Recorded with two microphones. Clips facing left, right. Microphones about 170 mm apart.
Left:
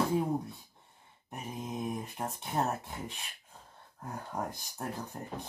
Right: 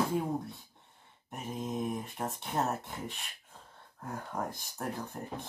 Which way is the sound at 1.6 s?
10° left (ahead or behind).